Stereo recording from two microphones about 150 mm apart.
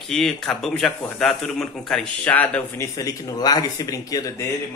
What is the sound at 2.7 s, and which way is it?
Speech, 20° left (ahead or behind).